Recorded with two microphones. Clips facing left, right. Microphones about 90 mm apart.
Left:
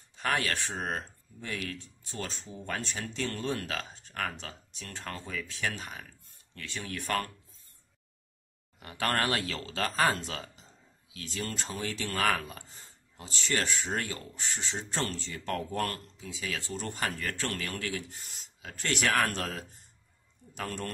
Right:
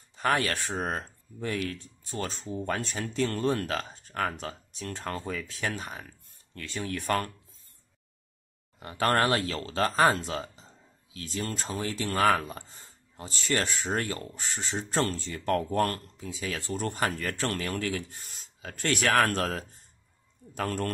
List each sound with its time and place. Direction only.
0.1 s speech: 40° right (ahead or behind)
8.7 s speech: 35° right (ahead or behind)
13.2 s speech: 45° right (ahead or behind)